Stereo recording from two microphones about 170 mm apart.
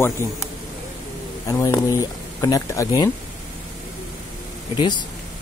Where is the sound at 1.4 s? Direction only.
20° left (ahead or behind).